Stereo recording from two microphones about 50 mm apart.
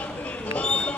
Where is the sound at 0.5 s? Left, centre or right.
Left.